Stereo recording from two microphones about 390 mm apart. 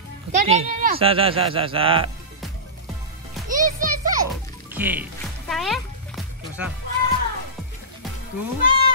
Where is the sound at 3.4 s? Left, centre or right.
Centre.